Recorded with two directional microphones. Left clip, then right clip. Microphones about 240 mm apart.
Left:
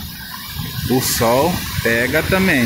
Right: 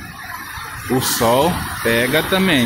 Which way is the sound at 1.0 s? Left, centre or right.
Centre.